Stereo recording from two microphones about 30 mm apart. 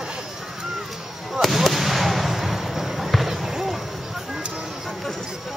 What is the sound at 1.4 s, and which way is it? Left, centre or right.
Fireworks, centre.